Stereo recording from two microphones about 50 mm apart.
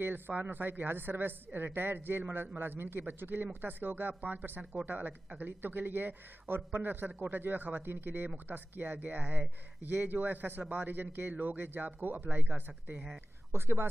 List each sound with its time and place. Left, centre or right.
0.4 s a man's voice: right
13.5 s a woman's voice: right